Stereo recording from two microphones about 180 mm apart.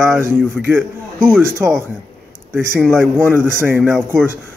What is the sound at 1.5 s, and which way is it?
Speech, 15° right (ahead or behind).